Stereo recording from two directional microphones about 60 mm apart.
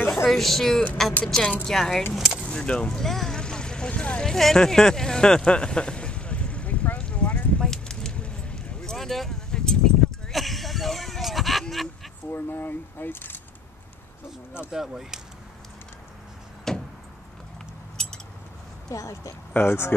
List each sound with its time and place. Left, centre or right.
0.1 s speech: centre
2.1 s speech: centre
2.4 s speech: centre
3.0 s vehicle: centre
4.2 s a sound: centre
8.9 s a sound: centre
11.7 s dog: centre
12.3 s speech: left
14.7 s speech: centre
16.7 s vehicle: centre
18.9 s speech: left
19.5 s speech: left